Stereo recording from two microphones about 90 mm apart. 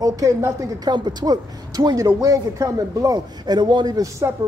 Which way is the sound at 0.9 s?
50° right (ahead or behind).